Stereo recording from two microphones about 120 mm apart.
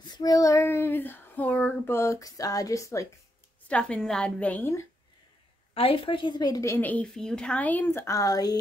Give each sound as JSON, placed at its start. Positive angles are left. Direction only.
{"t": 0.0, "sound": "child singing", "side_deg": 35}
{"t": 2.0, "sound": "speech", "side_deg": 25}
{"t": 3.6, "sound": "speech", "side_deg": 10}
{"t": 5.8, "sound": "a woman's voice", "side_deg": 50}
{"t": 6.8, "sound": "speech", "side_deg": 10}